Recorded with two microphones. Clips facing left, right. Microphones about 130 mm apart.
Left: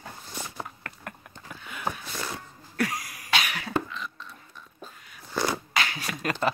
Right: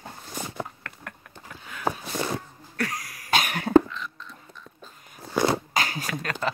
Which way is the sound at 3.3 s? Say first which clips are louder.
Right 9 dB; 45° right (ahead or behind).